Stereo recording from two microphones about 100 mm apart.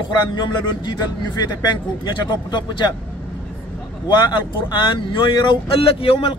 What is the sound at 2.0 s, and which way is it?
Speech, 45° left (ahead or behind).